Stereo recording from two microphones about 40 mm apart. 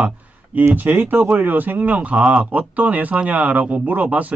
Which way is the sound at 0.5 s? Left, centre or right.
Right.